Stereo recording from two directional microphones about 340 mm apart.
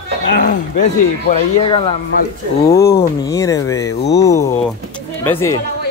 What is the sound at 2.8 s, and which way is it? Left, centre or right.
Speech, left.